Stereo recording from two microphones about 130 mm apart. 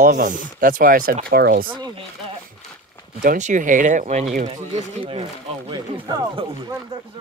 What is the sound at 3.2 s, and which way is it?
Speech, 80° right.